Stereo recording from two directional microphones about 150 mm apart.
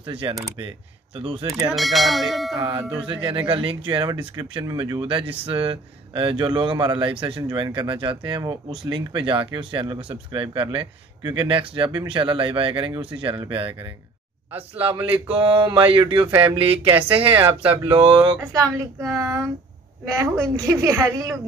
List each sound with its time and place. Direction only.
0.0 s speech: 35° right (ahead or behind)
1.7 s speech: centre (ahead or behind)
3.0 s speech: 35° right (ahead or behind)
15.2 s speech: 35° right (ahead or behind)
18.4 s a woman's voice: 20° right (ahead or behind)